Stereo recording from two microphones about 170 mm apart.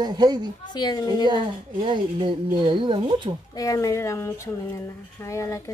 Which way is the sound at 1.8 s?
30° right (ahead or behind).